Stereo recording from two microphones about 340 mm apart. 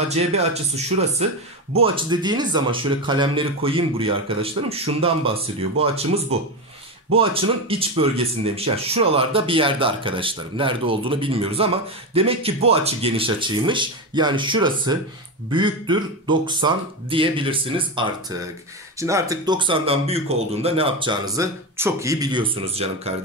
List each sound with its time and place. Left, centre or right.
0.1 s speech: centre
7.2 s speech: centre